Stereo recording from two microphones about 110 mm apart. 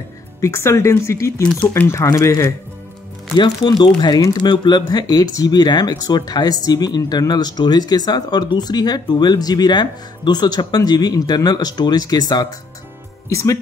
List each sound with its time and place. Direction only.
0.4 s speech: 25° left (ahead or behind)
3.3 s speech: 40° left (ahead or behind)